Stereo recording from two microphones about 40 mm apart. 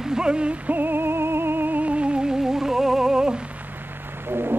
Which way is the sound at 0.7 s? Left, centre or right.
Right.